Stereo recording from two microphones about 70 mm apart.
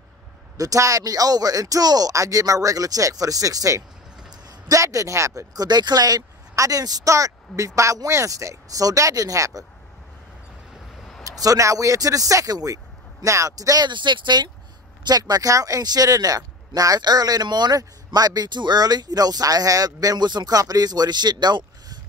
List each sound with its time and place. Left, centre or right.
0.6 s speech: right
5.5 s speech: right
11.2 s speech: right
15.0 s speech: right
17.7 s speech: right